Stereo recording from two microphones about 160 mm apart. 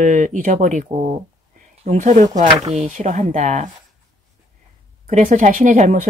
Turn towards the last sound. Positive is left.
turn(degrees=-55)  # may be behind; listen again after turning